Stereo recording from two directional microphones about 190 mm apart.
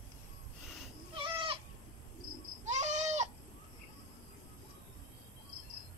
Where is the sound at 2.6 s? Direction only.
40° right (ahead or behind).